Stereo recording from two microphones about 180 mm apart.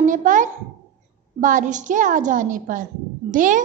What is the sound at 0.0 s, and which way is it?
A child's voice, 45° right (ahead or behind).